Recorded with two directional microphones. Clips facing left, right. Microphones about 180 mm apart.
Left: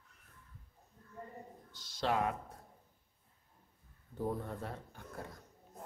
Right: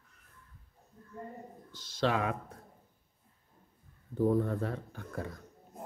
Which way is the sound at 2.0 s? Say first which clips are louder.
Right 3 dB; 90° right.